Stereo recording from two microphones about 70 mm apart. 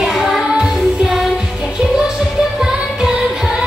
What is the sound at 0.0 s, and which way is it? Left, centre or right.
Child singing, centre.